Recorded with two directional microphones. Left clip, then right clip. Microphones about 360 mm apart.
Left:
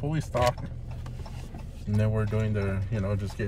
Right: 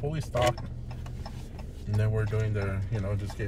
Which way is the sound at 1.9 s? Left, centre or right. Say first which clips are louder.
Left 2 dB; centre.